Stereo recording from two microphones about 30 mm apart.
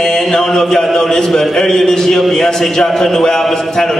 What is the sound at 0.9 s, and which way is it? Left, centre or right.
A man's voice, centre.